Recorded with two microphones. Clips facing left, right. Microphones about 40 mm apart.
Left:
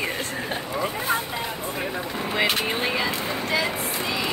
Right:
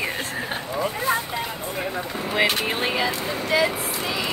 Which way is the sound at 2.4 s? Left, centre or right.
Centre.